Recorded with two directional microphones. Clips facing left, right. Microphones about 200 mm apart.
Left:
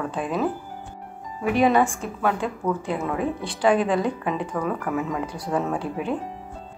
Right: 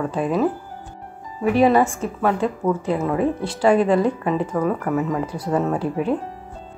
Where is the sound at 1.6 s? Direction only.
5° right (ahead or behind).